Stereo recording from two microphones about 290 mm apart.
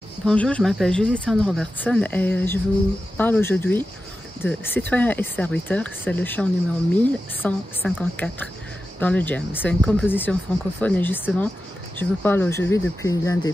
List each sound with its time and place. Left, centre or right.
0.2 s speech: centre